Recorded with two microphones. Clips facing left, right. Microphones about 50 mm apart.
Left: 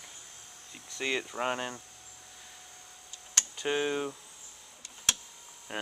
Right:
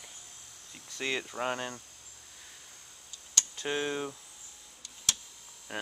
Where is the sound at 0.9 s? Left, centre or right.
Centre.